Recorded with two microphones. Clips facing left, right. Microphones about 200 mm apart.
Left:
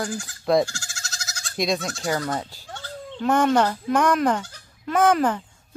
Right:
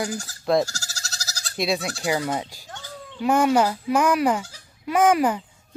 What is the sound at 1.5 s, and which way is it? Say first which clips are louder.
Speech: even; 5° right (ahead or behind).